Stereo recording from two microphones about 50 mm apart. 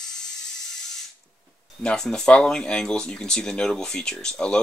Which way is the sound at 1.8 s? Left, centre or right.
Centre.